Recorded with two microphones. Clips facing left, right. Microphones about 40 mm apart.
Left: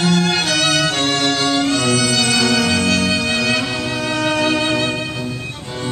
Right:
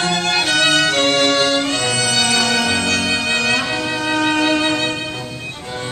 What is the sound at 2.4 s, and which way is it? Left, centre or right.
Music, centre.